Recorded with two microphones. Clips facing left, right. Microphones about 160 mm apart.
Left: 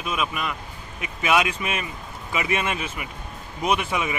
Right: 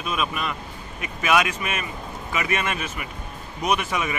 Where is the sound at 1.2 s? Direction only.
20° left (ahead or behind).